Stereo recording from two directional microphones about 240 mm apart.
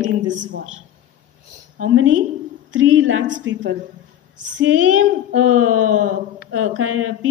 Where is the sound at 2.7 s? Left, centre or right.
Right.